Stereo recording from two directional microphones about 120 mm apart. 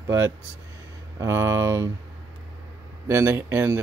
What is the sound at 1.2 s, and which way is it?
Speech, 20° right (ahead or behind).